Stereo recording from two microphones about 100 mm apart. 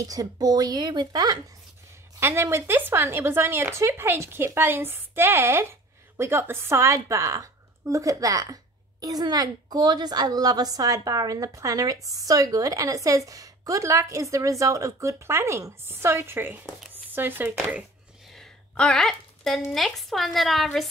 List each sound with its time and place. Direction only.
0.0 s a woman's voice: 40° right (ahead or behind)
2.1 s a woman's voice: 25° right (ahead or behind)
18.3 s a woman's voice: 5° left (ahead or behind)